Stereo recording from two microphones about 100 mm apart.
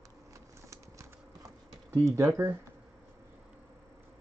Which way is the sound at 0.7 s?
30° right (ahead or behind).